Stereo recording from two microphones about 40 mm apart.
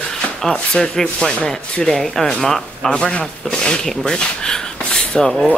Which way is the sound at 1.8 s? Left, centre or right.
Centre.